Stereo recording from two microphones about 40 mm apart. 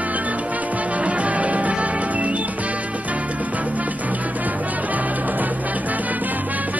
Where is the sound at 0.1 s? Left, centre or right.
Right.